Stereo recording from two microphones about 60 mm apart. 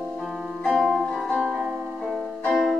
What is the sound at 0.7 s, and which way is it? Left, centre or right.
Music, centre.